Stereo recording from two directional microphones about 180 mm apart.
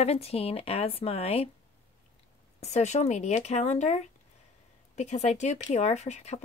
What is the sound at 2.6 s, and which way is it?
Speech, 40° left (ahead or behind).